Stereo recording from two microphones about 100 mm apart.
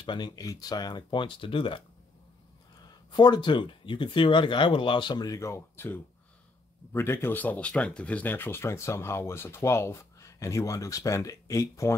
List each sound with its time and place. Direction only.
0.0 s speech: 50° left (ahead or behind)
0.4 s speech: 40° left (ahead or behind); by 1.8 s 60° left (ahead or behind)
3.1 s speech: 50° left (ahead or behind); by 11.9 s 30° left (ahead or behind)